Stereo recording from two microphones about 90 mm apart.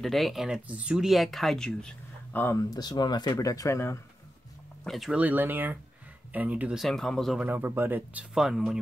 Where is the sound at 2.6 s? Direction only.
45° left (ahead or behind).